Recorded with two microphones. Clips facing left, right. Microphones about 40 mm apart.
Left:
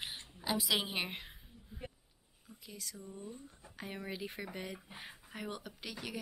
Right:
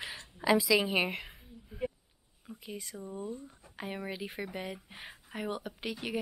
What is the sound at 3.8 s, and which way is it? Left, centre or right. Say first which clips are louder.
Speech: right 4 dB; centre.